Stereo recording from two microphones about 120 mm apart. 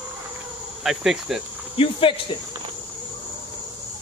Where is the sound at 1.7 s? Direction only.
50° left (ahead or behind).